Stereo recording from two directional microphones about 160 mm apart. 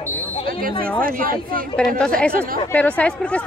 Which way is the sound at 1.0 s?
60° right (ahead or behind).